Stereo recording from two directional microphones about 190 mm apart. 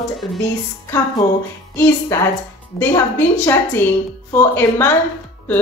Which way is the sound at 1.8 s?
15° left (ahead or behind).